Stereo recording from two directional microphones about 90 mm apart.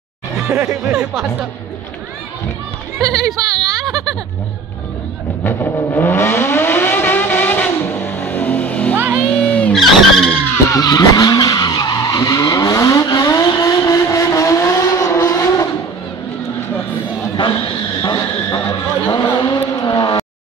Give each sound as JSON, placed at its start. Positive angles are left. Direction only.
{"t": 0.5, "sound": "speech", "side_deg": -20}
{"t": 3.3, "sound": "a sound", "side_deg": 5}
{"t": 5.4, "sound": "vehicle", "side_deg": 20}
{"t": 8.9, "sound": "music", "side_deg": -20}
{"t": 9.4, "sound": "vehicle", "side_deg": 15}
{"t": 9.8, "sound": "vehicle", "side_deg": 0}
{"t": 10.7, "sound": "vehicle", "side_deg": 45}
{"t": 17.4, "sound": "a sound", "side_deg": 60}